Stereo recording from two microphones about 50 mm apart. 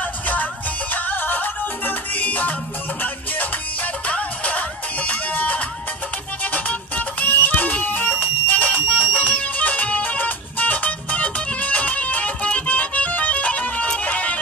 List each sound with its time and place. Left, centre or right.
0.0 s music: left